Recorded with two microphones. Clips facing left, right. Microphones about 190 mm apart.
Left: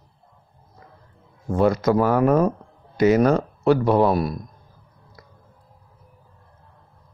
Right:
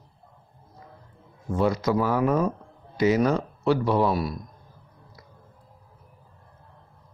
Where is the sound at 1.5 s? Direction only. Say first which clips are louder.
Left 5 dB; 55° left (ahead or behind).